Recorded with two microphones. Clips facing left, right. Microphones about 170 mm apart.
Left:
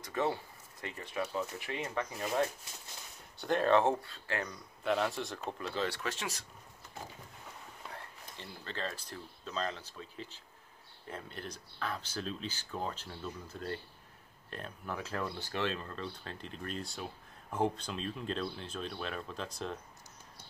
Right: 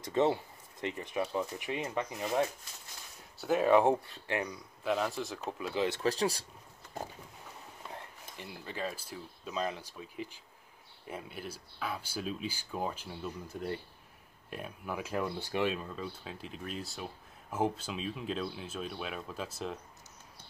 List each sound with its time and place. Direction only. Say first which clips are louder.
0.0 s speech: right 5 dB; 20° right (ahead or behind)
3.3 s speech: right 2 dB; 5° right (ahead or behind)
4.8 s speech: even; centre (ahead or behind)
5.8 s speech: right 4 dB; 20° right (ahead or behind)
6.0 s speech: right 9 dB; 35° right (ahead or behind)
7.9 s speech: right 2 dB; 15° right (ahead or behind)